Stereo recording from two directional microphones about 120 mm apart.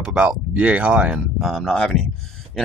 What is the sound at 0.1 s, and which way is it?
Speech, 10° right (ahead or behind).